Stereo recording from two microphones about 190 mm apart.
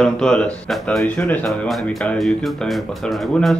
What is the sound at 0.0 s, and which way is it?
Speech, 5° left (ahead or behind).